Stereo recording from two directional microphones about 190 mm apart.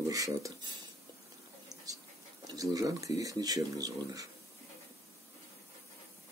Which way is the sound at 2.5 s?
20° right (ahead or behind).